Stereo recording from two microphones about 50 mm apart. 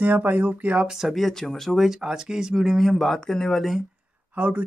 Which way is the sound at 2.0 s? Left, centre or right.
Centre.